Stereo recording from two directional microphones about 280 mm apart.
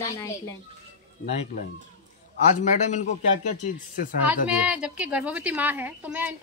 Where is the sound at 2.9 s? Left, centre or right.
Left.